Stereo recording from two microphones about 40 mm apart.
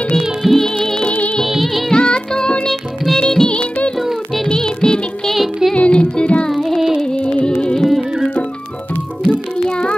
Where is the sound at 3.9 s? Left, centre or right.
Centre.